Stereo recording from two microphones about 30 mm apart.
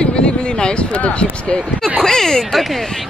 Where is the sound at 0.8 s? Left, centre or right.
Left.